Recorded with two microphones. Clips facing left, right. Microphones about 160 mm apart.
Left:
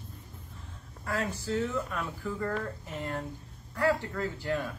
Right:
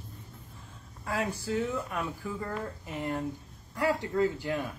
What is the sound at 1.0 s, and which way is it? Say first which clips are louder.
Speech: right 1 dB; 10° right (ahead or behind).